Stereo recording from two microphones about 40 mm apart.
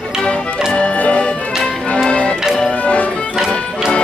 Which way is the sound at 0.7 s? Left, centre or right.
Left.